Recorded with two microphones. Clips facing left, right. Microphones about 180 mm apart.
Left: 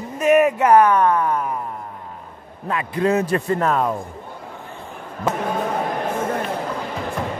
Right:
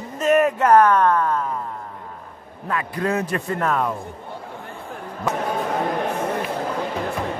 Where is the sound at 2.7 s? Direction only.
20° left (ahead or behind).